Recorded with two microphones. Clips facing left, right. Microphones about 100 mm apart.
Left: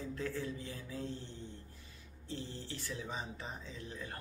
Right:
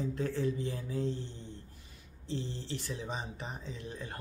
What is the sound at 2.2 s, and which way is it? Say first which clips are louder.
Speech: right 5 dB; 25° right (ahead or behind).